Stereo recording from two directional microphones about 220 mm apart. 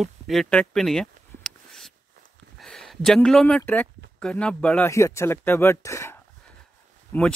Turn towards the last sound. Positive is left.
turn(degrees=10)  # may be behind; listen again after turning